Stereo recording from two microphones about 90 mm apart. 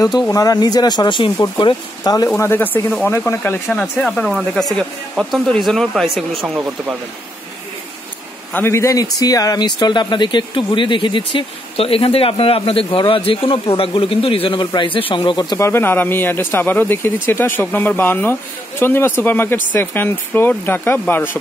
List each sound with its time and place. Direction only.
0.3 s speech: 45° left (ahead or behind); by 1.3 s 65° left (ahead or behind)
2.3 s speech: 25° left (ahead or behind)
4.0 s speech: 10° left (ahead or behind); by 7.0 s 10° right (ahead or behind)
8.5 s speech: 30° left (ahead or behind); by 13.0 s 85° left
13.0 s speech: 75° left (ahead or behind)
15.5 s speech: 30° left (ahead or behind)